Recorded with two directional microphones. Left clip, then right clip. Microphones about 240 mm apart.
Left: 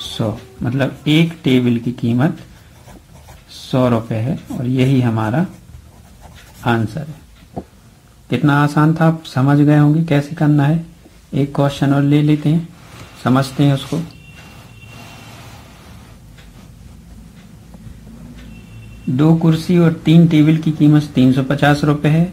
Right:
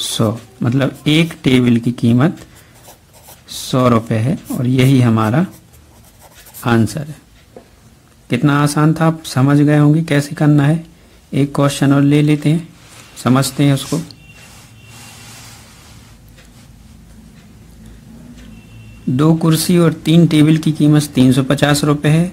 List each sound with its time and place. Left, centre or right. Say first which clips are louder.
0.2 s speech: right 4 dB; right
3.7 s speech: right 2 dB; right
6.6 s speech: right 2 dB; right
8.3 s speech: even; right
19.1 s speech: right 1 dB; right